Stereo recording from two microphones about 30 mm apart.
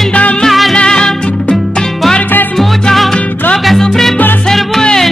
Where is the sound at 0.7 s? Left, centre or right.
Left.